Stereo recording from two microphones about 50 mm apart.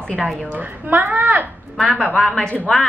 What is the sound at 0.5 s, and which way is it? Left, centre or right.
Speech, right.